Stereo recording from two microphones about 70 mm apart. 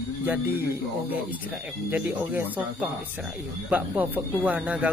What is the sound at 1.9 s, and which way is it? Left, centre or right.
Speech, right.